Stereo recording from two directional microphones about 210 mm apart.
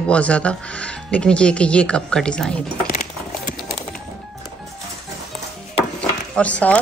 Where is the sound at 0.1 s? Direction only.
5° left (ahead or behind).